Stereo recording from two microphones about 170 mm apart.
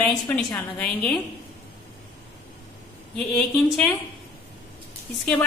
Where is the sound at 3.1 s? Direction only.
5° left (ahead or behind).